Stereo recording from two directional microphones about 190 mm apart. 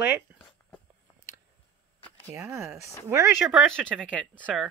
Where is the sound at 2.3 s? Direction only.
10° right (ahead or behind).